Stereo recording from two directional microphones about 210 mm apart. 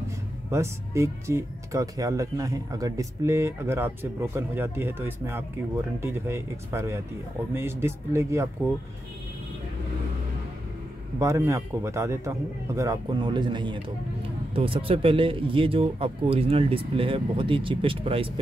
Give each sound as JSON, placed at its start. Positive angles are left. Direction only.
{"t": 0.5, "sound": "speech", "side_deg": -15}
{"t": 11.1, "sound": "speech", "side_deg": -15}